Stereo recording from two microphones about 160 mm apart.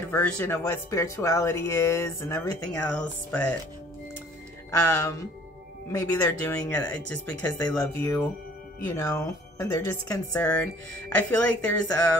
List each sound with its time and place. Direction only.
0.1 s speech: 10° left (ahead or behind)
4.6 s speech: 15° left (ahead or behind)